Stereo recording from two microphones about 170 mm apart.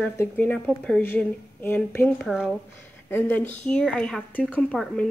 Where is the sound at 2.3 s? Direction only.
5° right (ahead or behind).